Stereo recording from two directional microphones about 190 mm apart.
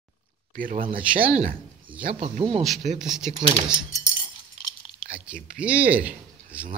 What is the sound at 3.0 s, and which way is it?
Speech, centre (ahead or behind).